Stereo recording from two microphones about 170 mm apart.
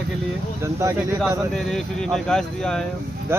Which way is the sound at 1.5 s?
5° left (ahead or behind).